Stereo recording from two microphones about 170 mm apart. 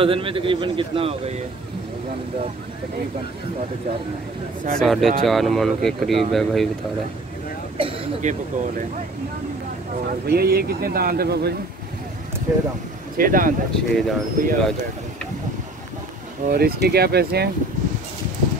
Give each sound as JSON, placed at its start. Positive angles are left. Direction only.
{"t": 0.0, "sound": "speech", "side_deg": -30}
{"t": 4.7, "sound": "speech", "side_deg": 0}
{"t": 7.7, "sound": "speech", "side_deg": -40}
{"t": 10.2, "sound": "speech", "side_deg": -65}
{"t": 13.2, "sound": "speech", "side_deg": -55}
{"t": 13.7, "sound": "speech", "side_deg": 5}
{"t": 14.4, "sound": "speech", "side_deg": -50}
{"t": 16.4, "sound": "speech", "side_deg": -65}